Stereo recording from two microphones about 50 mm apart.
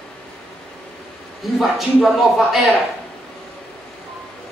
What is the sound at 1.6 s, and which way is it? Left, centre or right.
Speech, centre.